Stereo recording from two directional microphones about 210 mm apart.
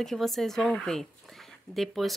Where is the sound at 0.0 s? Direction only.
Centre (ahead or behind).